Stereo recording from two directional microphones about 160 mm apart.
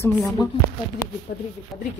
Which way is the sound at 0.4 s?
25° left (ahead or behind).